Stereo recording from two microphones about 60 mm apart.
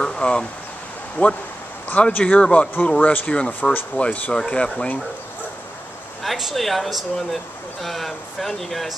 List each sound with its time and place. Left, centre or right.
0.0 s a sound: centre
1.2 s speech: left
6.2 s speech: centre